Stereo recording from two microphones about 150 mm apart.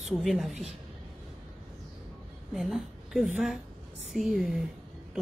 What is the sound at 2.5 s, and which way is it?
A woman's voice, centre (ahead or behind).